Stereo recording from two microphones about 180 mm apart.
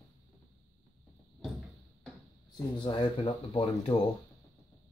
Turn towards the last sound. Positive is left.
turn(degrees=30)  # may be behind; listen again after turning